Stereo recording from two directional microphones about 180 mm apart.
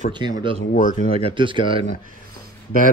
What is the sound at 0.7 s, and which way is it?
Speech, 45° left (ahead or behind).